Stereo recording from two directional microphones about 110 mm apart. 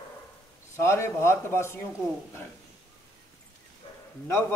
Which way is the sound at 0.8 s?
25° left (ahead or behind).